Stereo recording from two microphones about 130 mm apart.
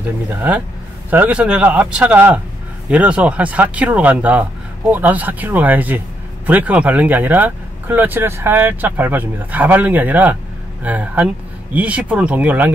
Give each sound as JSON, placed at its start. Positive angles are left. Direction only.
{"t": 0.3, "sound": "speech", "side_deg": -15}